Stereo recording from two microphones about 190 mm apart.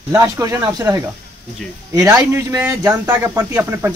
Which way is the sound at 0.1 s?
15° right (ahead or behind).